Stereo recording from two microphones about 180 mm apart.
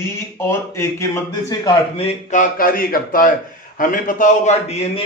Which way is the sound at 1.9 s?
35° left (ahead or behind).